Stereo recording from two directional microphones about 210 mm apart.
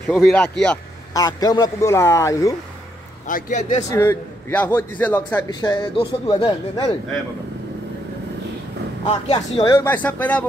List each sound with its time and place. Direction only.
0.0 s speech: 5° left (ahead or behind)
1.1 s a man's voice: 20° left (ahead or behind)
3.3 s a man's voice: 40° left (ahead or behind)
3.9 s a man's voice: 15° left (ahead or behind)
9.0 s speech: 25° left (ahead or behind)
9.8 s a man's voice: 10° left (ahead or behind)